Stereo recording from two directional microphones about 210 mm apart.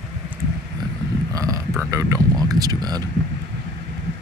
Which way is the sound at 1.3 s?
15° right (ahead or behind).